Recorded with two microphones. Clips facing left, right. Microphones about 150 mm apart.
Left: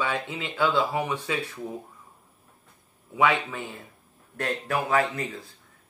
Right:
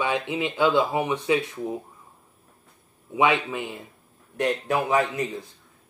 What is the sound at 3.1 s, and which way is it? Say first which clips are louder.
Speech: right 2 dB; 20° right (ahead or behind).